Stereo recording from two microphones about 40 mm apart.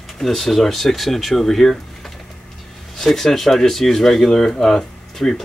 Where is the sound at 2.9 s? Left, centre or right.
Centre.